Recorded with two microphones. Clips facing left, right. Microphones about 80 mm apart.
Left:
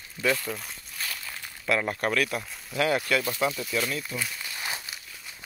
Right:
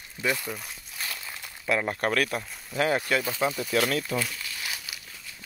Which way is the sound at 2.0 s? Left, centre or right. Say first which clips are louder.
Right 1 dB; right.